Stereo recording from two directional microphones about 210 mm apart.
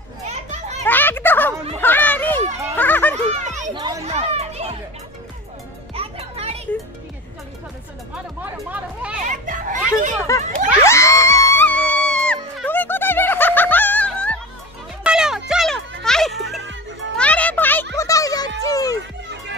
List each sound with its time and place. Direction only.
0.5 s children playing: 35° right (ahead or behind)
0.8 s children playing: 10° left (ahead or behind)
2.8 s a sound: 10° left (ahead or behind)
3.2 s children playing: 35° right (ahead or behind)
3.7 s chatter: 20° right (ahead or behind)
5.9 s music: 30° right (ahead or behind)
8.4 s speech: 5° right (ahead or behind)
9.2 s children playing: 40° right (ahead or behind)
10.3 s speech: 15° left (ahead or behind)
10.8 s music: 15° left (ahead or behind)
18.6 s children playing: 15° left (ahead or behind)